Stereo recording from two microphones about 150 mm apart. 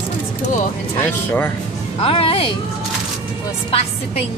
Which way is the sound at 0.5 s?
55° left (ahead or behind).